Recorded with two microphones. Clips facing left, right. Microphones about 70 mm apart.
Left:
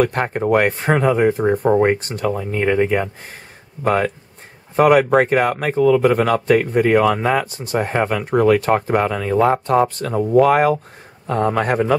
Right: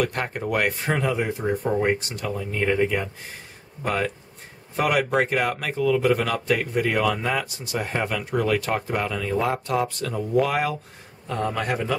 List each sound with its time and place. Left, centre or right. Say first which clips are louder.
0.0 s a man's voice: left 8 dB; left